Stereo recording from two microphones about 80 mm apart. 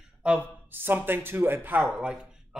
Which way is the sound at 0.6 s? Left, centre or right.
Right.